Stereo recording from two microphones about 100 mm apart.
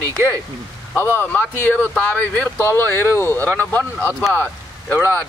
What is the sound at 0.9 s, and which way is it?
Speech, 20° left (ahead or behind).